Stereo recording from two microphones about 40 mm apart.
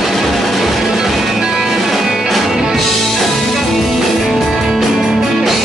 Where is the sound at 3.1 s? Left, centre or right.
Centre.